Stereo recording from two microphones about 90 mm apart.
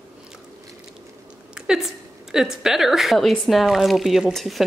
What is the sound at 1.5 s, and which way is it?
A woman's voice, 5° right (ahead or behind).